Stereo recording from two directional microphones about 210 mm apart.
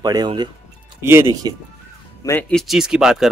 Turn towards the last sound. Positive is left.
turn(degrees=0)  # may be behind; listen again after turning